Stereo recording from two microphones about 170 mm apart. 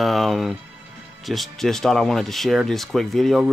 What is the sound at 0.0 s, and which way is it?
Speech, centre (ahead or behind).